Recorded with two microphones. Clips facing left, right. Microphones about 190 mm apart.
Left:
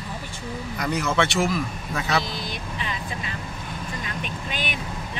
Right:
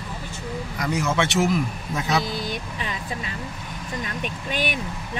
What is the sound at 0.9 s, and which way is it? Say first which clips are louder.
Speech: even; 15° right (ahead or behind).